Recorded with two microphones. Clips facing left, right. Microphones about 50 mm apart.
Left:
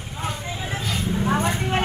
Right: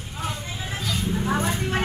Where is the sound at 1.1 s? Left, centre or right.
Centre.